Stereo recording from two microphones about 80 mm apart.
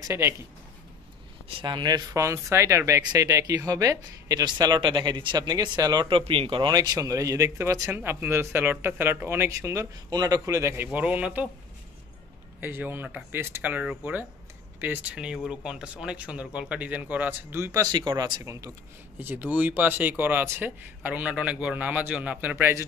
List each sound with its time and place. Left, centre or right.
0.0 s a man's voice: right
1.6 s speech: right
2.1 s speech: right
4.5 s speech: right
6.0 s speech: right
6.7 s speech: right
8.0 s speech: right
10.4 s speech: right
10.9 s speech: centre
12.5 s speech: right
15.1 s speech: centre; by 17.6 s right
17.9 s speech: right
18.4 s speech: right
19.1 s speech: right